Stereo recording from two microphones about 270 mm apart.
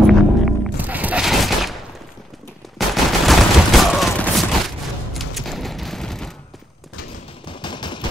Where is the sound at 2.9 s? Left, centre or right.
Centre.